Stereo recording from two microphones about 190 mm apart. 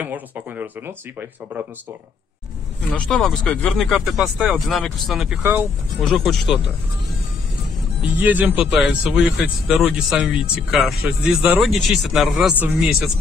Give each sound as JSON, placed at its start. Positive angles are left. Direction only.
{"t": 0.0, "sound": "speech", "side_deg": -10}
{"t": 2.9, "sound": "speech", "side_deg": 5}
{"t": 6.0, "sound": "speech", "side_deg": 0}
{"t": 8.0, "sound": "speech", "side_deg": -10}